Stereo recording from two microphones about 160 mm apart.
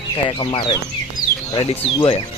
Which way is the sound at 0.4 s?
30° left (ahead or behind).